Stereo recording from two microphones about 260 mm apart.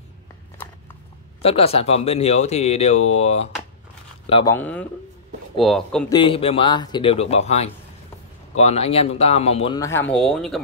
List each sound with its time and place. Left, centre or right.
1.4 s speech: left
4.6 s a man's voice: centre
6.0 s speech: centre